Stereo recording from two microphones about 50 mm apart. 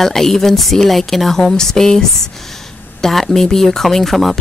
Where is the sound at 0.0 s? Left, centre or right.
Centre.